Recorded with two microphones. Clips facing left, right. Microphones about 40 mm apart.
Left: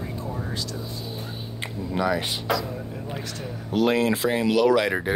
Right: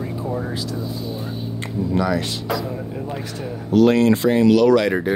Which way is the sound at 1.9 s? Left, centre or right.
Centre.